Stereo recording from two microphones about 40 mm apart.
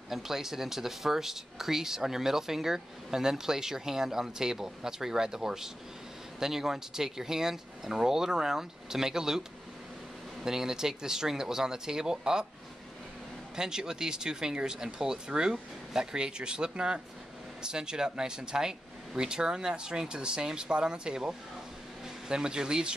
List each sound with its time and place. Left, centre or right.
0.1 s speech: centre
10.4 s speech: centre
13.6 s speech: centre